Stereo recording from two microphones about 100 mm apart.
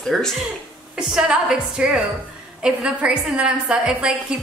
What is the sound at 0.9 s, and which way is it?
A woman's voice, 10° right (ahead or behind).